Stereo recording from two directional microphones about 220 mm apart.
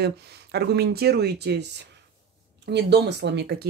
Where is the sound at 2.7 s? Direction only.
50° right (ahead or behind).